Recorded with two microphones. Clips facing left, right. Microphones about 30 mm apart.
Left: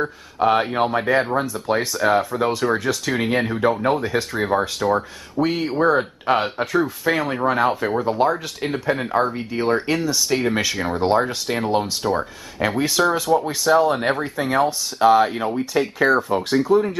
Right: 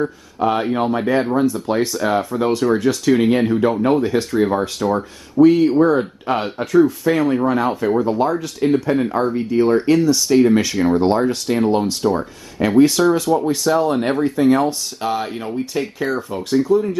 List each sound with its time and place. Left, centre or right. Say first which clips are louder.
0.0 s speech: right 1 dB; left; by 4.3 s centre
4.8 s speech: right 1 dB; left
5.4 s speech: right 10 dB; centre
5.9 s speech: right 1 dB; centre
10.3 s speech: right 8 dB; centre
11.0 s speech: right 2 dB; centre
12.5 s speech: right 6 dB; centre